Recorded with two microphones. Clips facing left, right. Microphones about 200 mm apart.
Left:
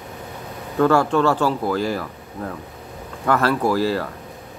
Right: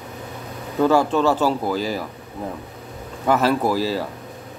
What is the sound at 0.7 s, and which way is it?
A man's voice, 10° right (ahead or behind).